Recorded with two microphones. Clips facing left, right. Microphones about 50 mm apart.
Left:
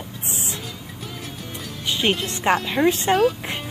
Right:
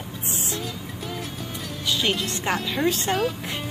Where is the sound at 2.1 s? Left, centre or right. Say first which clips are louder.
Left 5 dB; centre.